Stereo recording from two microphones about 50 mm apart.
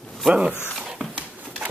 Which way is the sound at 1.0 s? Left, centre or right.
Right.